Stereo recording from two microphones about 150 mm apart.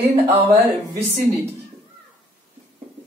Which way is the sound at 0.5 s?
45° right (ahead or behind).